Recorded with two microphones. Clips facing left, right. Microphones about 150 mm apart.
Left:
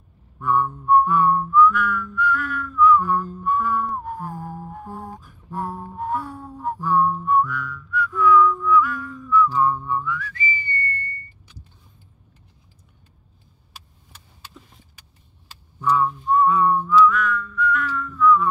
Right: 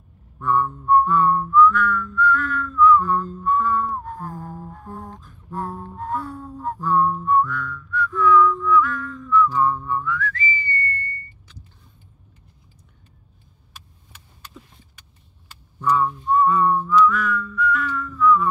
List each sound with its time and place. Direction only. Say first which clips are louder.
0.4 s whistling: even; 10° left (ahead or behind)
15.8 s whistling: even; centre (ahead or behind)